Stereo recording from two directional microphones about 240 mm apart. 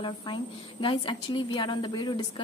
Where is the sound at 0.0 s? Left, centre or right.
Centre.